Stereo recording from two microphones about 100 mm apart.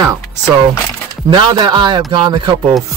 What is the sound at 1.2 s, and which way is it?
Speech, 50° right (ahead or behind).